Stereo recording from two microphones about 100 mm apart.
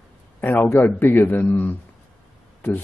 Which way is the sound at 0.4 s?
25° left (ahead or behind).